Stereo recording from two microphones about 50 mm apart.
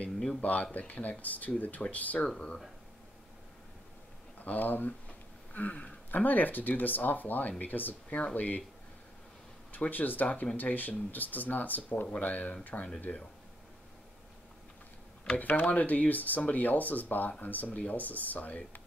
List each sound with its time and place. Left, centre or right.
0.4 s speech: left
2.1 s speech: centre
4.4 s speech: left
8.1 s speech: left
9.7 s speech: left
15.3 s speech: left